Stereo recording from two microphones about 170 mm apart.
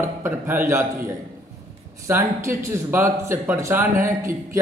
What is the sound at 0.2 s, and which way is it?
Speech, 15° right (ahead or behind).